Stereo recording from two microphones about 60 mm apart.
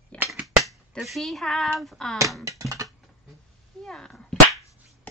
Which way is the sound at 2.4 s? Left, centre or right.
Right.